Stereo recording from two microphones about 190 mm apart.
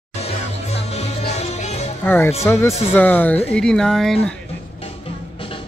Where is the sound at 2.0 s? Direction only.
10° left (ahead or behind).